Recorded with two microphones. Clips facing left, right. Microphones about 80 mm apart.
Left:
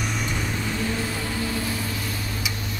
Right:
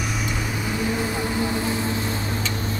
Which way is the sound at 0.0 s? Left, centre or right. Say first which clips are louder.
Right 1 dB; centre.